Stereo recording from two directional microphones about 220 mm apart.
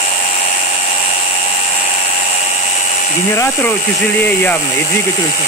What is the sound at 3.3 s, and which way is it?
Speech, 10° left (ahead or behind).